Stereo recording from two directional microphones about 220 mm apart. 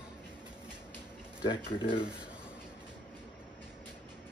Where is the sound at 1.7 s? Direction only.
25° left (ahead or behind).